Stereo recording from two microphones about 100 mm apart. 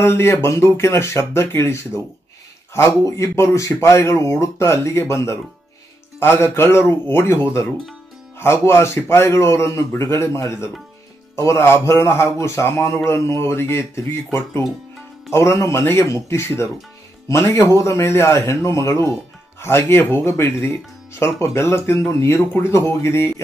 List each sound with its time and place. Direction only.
0.0 s a man's voice: 25° left (ahead or behind)